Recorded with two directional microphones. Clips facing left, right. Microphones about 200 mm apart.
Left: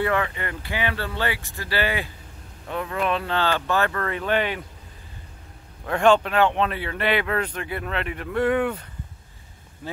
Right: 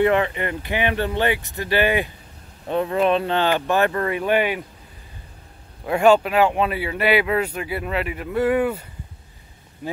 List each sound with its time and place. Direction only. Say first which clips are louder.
0.0 s speech: right 6 dB; 20° right (ahead or behind)
5.9 s speech: right 3 dB; 10° right (ahead or behind)